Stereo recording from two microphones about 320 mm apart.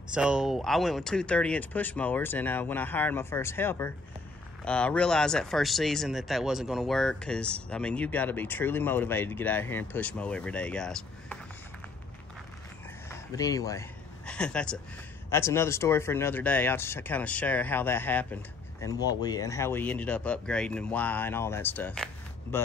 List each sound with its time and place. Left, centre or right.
0.1 s speech: centre
13.1 s speech: centre